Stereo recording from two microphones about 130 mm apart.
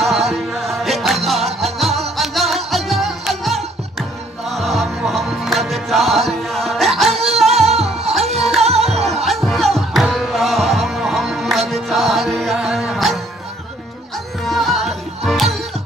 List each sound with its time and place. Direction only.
0.0 s music: centre (ahead or behind)
7.5 s music: 55° right (ahead or behind)
8.4 s music: centre (ahead or behind)
8.6 s music: 55° right (ahead or behind)
9.0 s music: centre (ahead or behind)
14.4 s music: centre (ahead or behind)